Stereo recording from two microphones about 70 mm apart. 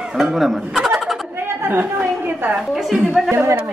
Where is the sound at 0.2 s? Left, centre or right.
Centre.